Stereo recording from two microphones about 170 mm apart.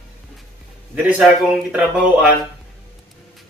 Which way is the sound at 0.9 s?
5° right (ahead or behind).